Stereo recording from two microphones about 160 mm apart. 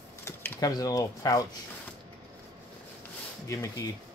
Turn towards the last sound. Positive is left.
turn(degrees=20)  # may be behind; listen again after turning